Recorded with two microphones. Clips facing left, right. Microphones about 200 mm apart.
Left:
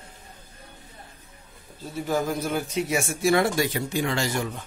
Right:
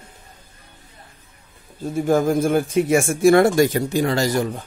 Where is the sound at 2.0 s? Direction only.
50° right (ahead or behind).